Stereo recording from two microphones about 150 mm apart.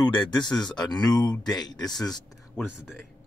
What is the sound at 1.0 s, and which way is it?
Speech, 5° left (ahead or behind).